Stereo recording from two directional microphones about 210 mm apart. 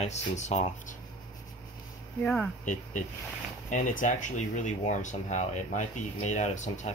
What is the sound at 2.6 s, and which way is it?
Speech, 35° left (ahead or behind).